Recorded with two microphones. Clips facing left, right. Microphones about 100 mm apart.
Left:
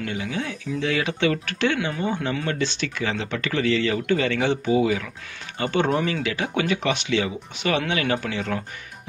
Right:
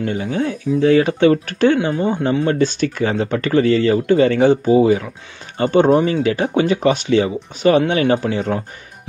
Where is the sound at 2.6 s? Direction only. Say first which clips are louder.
Right 9 dB; 45° right (ahead or behind).